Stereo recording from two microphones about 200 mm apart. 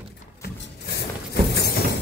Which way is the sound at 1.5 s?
50° left (ahead or behind).